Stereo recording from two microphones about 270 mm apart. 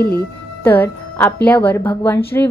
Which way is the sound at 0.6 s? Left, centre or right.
Centre.